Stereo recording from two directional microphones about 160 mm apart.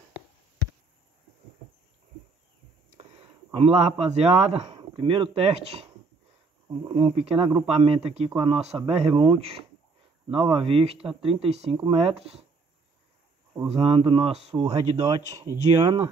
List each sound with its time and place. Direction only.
3.5 s speech: 40° right (ahead or behind)
13.7 s speech: 35° right (ahead or behind)